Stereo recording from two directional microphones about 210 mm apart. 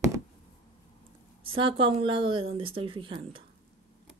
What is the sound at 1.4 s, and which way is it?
Speech, 25° right (ahead or behind).